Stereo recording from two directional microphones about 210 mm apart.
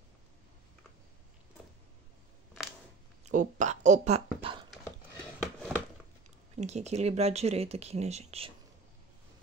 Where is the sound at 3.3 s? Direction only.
35° right (ahead or behind).